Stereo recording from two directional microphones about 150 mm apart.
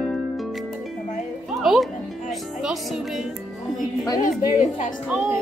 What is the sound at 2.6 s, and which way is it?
Speech, 5° right (ahead or behind).